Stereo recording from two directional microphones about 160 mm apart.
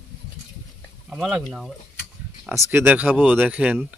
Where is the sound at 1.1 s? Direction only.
Centre (ahead or behind).